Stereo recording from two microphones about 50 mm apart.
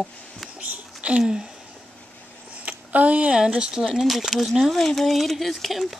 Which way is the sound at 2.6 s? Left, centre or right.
Right.